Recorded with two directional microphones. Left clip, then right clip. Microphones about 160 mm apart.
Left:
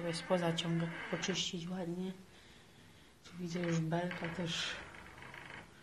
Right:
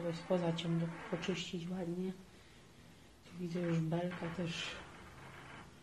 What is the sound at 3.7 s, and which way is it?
Speech, centre (ahead or behind).